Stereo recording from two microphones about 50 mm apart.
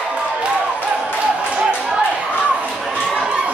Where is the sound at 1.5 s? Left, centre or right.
Centre.